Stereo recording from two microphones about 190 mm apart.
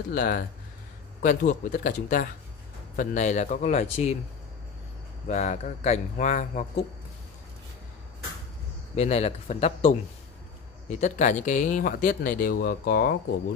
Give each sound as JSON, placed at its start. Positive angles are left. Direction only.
{"t": 0.1, "sound": "speech", "side_deg": 50}
{"t": 5.3, "sound": "speech", "side_deg": 40}
{"t": 8.9, "sound": "speech", "side_deg": 35}
{"t": 11.0, "sound": "speech", "side_deg": 40}